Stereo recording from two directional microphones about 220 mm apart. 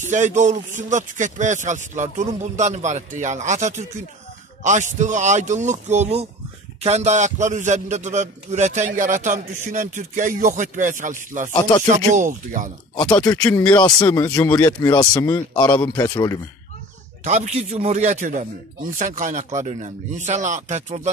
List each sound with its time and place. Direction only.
0.1 s a man's voice: 35° right (ahead or behind)
12.9 s speech: 15° left (ahead or behind)
15.8 s speech: 10° left (ahead or behind)
17.2 s a man's voice: 30° right (ahead or behind)